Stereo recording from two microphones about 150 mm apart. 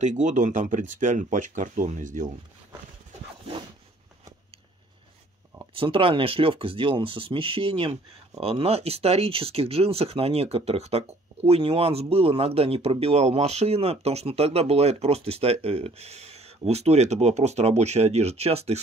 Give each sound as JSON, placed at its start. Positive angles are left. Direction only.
{"t": 0.0, "sound": "speech", "side_deg": -55}
{"t": 5.8, "sound": "speech", "side_deg": -35}